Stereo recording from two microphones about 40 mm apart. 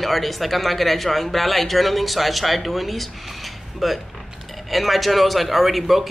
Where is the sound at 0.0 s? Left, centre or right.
Centre.